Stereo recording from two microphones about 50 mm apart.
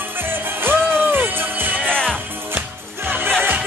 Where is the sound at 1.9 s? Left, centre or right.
Centre.